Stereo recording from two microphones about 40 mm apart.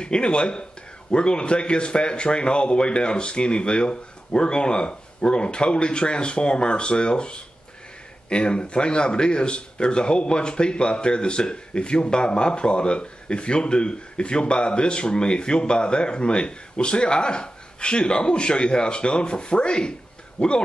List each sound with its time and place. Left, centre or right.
0.0 s speech: left